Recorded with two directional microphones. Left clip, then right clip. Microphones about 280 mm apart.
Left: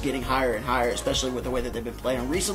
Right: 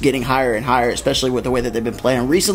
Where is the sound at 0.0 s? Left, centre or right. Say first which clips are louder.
Right 8 dB; right.